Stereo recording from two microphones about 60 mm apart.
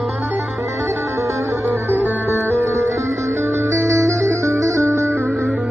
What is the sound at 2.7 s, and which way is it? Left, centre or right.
Music, right.